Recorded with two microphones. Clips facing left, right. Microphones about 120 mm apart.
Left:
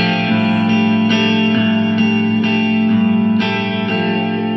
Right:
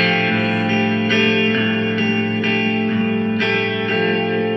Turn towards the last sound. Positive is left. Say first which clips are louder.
# left 5 dB
turn(degrees=25)  # may be behind; listen again after turning